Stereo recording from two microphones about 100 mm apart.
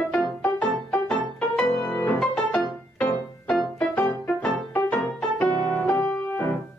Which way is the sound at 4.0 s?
20° left (ahead or behind).